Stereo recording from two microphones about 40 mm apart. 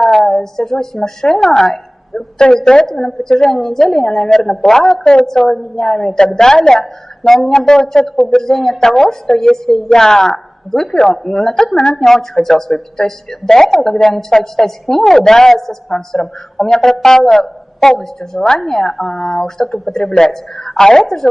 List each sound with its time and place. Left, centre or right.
0.0 s a woman's voice: centre
11.5 s a woman's voice: left
11.9 s a woman's voice: centre